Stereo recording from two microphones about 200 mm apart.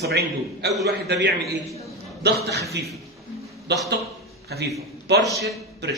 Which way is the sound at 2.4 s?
55° right (ahead or behind).